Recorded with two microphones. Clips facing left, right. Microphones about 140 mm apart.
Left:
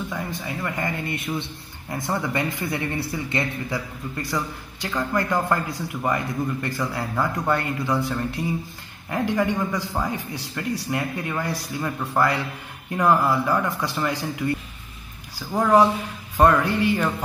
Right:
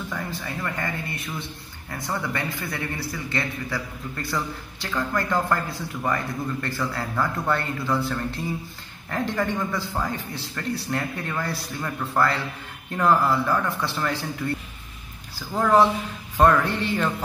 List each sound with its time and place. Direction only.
0.1 s a man's voice: 15° left (ahead or behind)